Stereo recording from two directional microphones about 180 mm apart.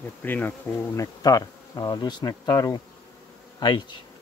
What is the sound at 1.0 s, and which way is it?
A man's voice, 20° left (ahead or behind).